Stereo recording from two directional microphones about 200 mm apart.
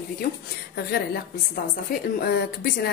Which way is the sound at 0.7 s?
50° left (ahead or behind).